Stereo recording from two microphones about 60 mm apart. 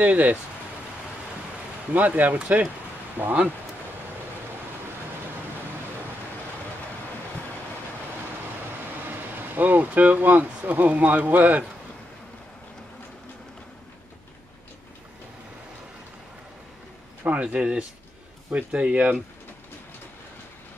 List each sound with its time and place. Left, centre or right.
0.0 s speech: right
2.0 s speech: right
9.0 s speech: right
17.2 s speech: right